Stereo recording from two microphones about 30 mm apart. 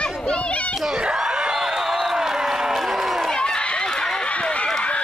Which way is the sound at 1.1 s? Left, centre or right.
Right.